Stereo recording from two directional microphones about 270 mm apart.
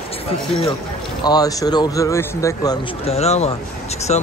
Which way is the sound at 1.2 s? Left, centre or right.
Centre.